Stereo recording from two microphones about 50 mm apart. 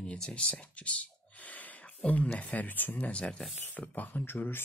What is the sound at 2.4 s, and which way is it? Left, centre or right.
Speech, left.